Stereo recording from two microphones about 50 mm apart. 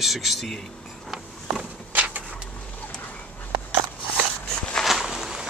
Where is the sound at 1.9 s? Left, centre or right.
Right.